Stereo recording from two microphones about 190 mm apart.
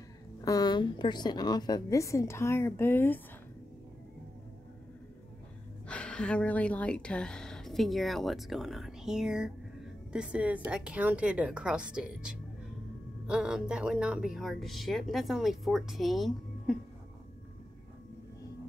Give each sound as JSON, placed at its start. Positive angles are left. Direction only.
{"t": 0.4, "sound": "a woman's voice", "side_deg": 20}
{"t": 5.9, "sound": "speech", "side_deg": 5}